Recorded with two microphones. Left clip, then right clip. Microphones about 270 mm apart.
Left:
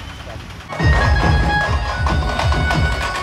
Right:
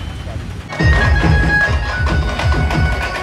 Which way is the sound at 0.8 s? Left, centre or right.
Left.